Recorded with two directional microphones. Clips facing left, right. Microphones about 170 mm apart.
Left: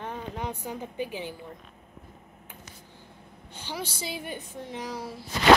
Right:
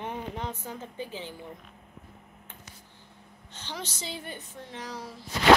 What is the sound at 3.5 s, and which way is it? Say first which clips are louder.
A woman's voice: left 3 dB; 10° left (ahead or behind).